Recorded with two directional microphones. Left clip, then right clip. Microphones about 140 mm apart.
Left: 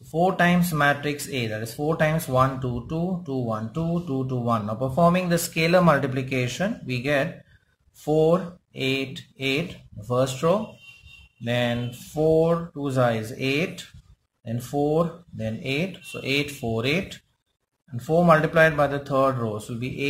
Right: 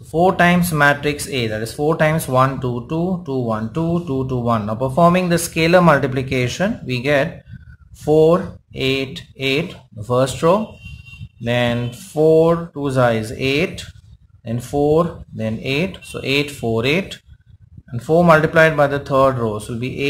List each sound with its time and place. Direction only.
0.4 s speech: 20° right (ahead or behind)